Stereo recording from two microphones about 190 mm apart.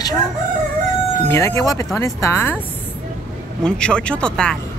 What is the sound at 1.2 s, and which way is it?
Speech, 15° left (ahead or behind).